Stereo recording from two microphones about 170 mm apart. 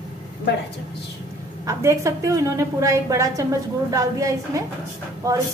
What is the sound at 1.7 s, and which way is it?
A woman's voice, 20° right (ahead or behind).